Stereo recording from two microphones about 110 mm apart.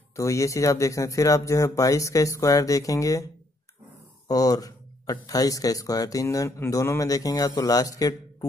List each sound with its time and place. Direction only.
0.1 s speech: 30° left (ahead or behind)
4.3 s a sound: 35° left (ahead or behind)
5.2 s speech: 35° left (ahead or behind)